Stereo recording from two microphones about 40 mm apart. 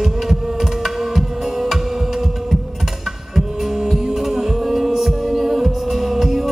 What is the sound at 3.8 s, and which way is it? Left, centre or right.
Music, centre.